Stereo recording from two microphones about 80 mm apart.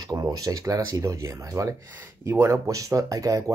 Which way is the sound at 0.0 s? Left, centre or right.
Right.